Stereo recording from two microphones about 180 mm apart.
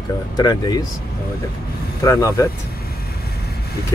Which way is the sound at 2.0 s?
20° left (ahead or behind).